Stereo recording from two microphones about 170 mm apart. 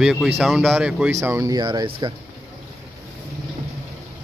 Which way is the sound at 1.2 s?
15° right (ahead or behind).